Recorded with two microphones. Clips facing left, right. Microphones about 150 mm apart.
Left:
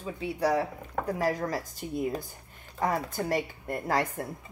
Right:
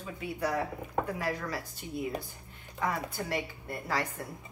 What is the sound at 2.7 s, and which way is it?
Speech, 40° left (ahead or behind).